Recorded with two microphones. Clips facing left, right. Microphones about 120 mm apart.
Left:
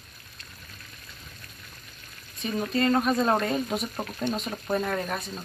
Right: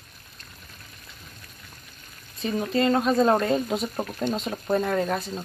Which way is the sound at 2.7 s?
25° right (ahead or behind).